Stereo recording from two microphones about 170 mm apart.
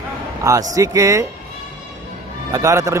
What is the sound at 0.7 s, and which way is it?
Speech, 20° right (ahead or behind).